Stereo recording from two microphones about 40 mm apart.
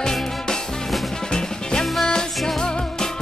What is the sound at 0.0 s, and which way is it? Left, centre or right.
Music, centre.